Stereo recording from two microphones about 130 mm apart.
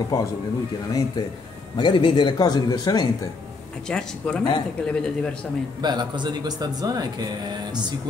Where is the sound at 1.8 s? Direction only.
35° left (ahead or behind).